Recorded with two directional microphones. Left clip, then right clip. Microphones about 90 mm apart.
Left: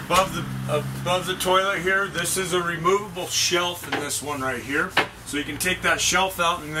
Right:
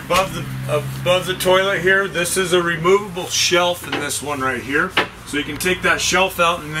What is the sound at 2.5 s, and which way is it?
Speech, 5° right (ahead or behind).